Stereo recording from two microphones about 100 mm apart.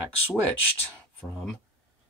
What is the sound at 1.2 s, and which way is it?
Speech, 5° left (ahead or behind).